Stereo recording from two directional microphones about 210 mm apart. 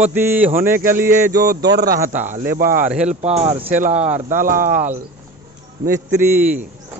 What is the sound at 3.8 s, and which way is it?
Speech, 30° right (ahead or behind).